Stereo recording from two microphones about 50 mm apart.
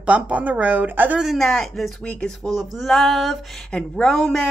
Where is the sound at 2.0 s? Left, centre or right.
Left.